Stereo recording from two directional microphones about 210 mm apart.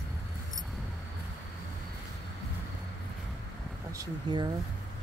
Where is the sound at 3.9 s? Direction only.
20° right (ahead or behind).